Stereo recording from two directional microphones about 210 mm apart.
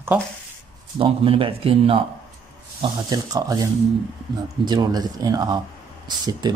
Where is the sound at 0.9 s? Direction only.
25° right (ahead or behind).